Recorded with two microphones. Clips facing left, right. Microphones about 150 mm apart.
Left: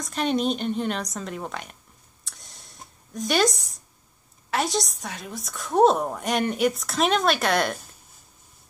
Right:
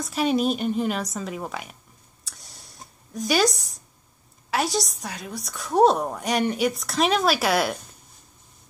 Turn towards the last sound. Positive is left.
turn(degrees=-5)  # may be behind; listen again after turning